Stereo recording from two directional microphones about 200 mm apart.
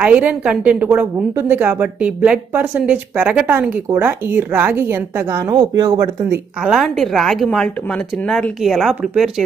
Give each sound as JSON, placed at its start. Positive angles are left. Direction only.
{"t": 0.0, "sound": "speech", "side_deg": -5}
{"t": 6.6, "sound": "a woman's voice", "side_deg": 0}